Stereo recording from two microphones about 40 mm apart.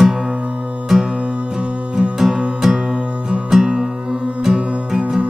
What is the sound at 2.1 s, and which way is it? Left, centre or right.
Music, centre.